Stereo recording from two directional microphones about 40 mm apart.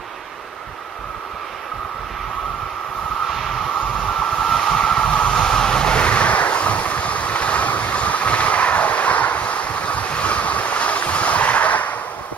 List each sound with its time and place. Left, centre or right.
3.3 s vehicle: centre
4.4 s a sound: centre
4.8 s vehicle: left